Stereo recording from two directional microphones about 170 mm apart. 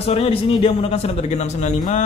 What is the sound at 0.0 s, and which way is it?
A man's voice, 35° left (ahead or behind).